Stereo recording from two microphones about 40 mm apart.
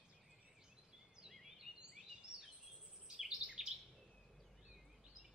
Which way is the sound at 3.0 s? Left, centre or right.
Centre.